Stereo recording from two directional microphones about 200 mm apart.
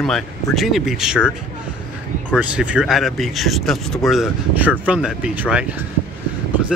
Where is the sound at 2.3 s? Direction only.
5° right (ahead or behind).